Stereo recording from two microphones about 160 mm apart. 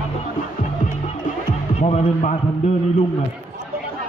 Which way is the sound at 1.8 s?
45° left (ahead or behind).